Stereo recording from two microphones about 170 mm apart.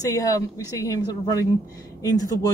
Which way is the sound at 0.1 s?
20° left (ahead or behind).